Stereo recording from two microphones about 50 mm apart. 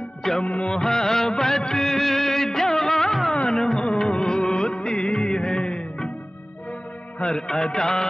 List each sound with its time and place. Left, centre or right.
0.4 s music: left
3.3 s music of bollywood: centre
7.2 s music: centre